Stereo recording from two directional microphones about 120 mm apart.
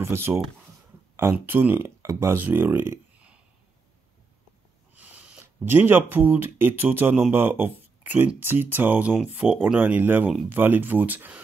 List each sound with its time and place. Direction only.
0.0 s speech: 20° right (ahead or behind)
4.9 s speech: 10° right (ahead or behind)